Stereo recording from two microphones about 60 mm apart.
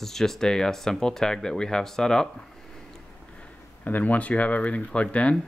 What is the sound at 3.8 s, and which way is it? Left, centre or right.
Speech, left.